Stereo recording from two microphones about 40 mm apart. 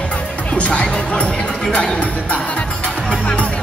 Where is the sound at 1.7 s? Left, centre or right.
Left.